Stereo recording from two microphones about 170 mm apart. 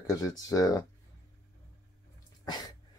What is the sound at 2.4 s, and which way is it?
Sneeze, 25° left (ahead or behind).